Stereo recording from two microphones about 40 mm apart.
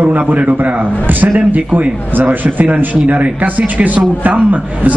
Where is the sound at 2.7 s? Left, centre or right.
Right.